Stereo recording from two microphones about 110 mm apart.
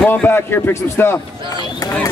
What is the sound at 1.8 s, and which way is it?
Speech, 30° left (ahead or behind).